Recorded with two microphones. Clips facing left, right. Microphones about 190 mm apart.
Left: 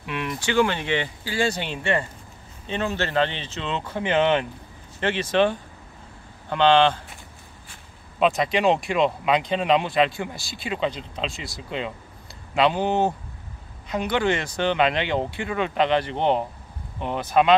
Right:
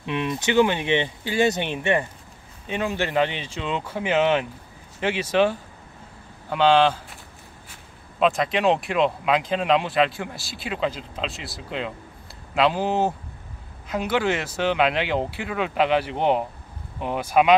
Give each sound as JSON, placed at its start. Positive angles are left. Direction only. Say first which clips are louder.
{"t": 0.0, "sound": "speech", "louder": "right 3 dB", "side_deg": -20}
{"t": 8.2, "sound": "speech", "louder": "even", "side_deg": 0}